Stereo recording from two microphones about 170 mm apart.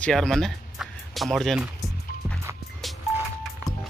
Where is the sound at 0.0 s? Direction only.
5° left (ahead or behind).